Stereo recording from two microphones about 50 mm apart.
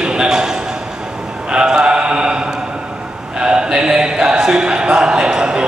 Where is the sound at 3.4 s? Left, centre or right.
Centre.